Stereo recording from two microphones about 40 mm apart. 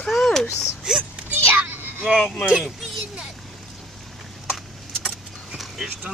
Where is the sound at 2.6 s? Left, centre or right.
Centre.